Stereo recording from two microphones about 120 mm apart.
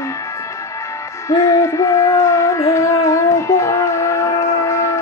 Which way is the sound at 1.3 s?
25° left (ahead or behind).